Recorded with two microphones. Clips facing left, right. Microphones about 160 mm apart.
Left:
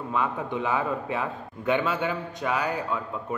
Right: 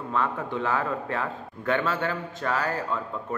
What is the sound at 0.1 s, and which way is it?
A man's voice, 10° left (ahead or behind).